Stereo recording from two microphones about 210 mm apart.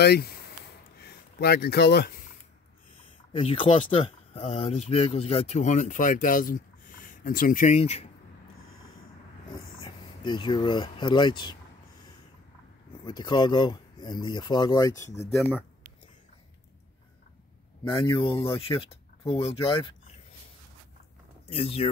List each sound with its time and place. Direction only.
0.0 s speech: 50° left (ahead or behind)
3.3 s speech: 25° left (ahead or behind)
8.6 s snort: 75° left (ahead or behind)
9.5 s speech: 25° left (ahead or behind)
13.0 s speech: 20° left (ahead or behind)
17.8 s speech: 20° left (ahead or behind)
21.5 s speech: 30° left (ahead or behind)